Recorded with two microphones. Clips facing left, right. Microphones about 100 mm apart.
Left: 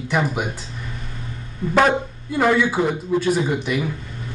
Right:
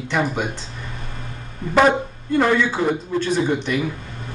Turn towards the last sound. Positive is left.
turn(degrees=10)  # may be behind; listen again after turning